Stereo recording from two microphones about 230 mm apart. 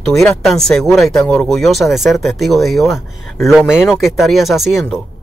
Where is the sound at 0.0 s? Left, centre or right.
Centre.